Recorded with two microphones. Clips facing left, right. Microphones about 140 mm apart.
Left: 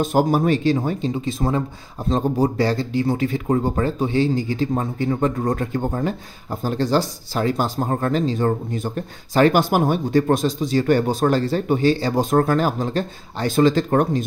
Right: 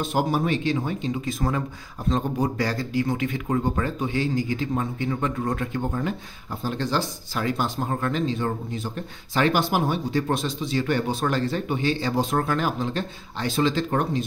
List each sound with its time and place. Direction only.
0.0 s speech: 40° left (ahead or behind)